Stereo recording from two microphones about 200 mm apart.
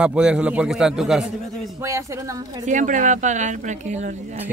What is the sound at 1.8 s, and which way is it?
Speech, 15° right (ahead or behind).